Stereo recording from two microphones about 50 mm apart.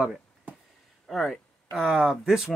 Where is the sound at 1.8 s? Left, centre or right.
Centre.